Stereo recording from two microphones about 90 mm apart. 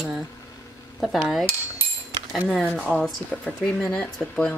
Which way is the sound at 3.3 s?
15° left (ahead or behind).